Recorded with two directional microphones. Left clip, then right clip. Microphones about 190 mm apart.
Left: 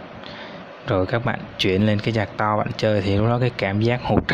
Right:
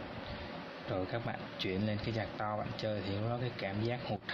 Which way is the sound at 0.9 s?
40° left (ahead or behind).